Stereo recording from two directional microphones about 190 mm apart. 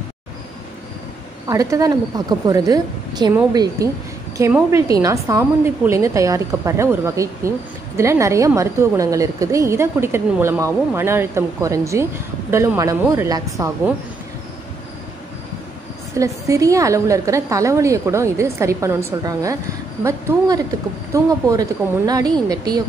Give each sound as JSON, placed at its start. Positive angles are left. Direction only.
{"t": 1.5, "sound": "a woman's voice", "side_deg": -20}
{"t": 16.2, "sound": "a woman's voice", "side_deg": -15}